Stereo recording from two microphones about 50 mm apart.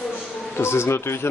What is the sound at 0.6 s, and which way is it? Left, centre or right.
Speech, left.